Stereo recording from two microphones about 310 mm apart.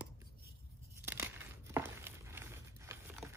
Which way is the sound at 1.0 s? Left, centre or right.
Centre.